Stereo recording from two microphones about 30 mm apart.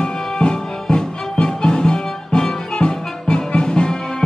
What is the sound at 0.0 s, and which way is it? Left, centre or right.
Music, left.